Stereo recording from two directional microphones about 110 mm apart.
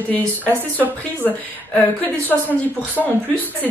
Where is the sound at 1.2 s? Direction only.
15° left (ahead or behind).